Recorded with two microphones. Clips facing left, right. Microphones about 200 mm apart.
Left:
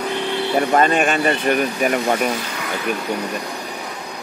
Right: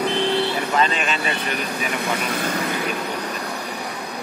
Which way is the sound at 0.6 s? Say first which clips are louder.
Left 6 dB; 50° left (ahead or behind).